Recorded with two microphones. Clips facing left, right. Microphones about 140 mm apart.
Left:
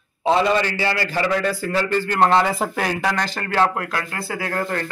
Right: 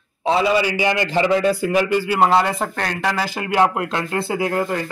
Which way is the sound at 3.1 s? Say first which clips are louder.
Right 2 dB; 10° right (ahead or behind).